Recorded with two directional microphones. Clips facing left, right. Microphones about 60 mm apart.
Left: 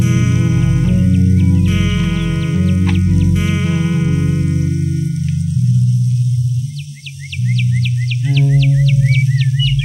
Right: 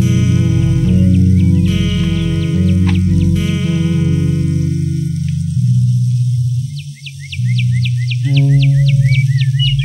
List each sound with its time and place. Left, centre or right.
0.0 s music: left
8.3 s music: left